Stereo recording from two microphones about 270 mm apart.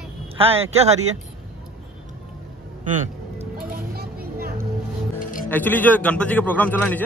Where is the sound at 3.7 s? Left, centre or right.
Right.